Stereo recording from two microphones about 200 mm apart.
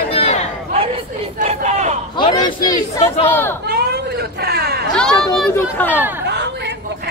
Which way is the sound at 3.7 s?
50° right (ahead or behind).